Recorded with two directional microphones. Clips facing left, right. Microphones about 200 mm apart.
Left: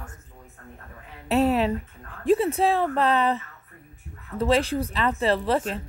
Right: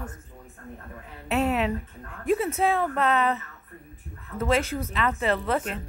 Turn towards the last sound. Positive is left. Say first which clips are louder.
# left 3 dB
turn(degrees=30)  # may be behind; listen again after turning